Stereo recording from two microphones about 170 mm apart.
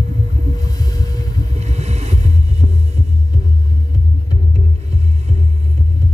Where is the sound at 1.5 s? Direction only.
40° right (ahead or behind).